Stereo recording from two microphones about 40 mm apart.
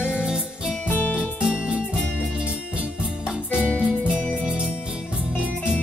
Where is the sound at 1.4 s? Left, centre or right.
Right.